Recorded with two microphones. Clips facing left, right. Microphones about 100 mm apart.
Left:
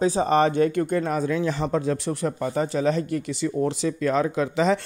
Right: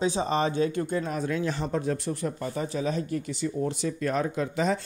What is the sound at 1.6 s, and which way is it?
Speech, 85° left.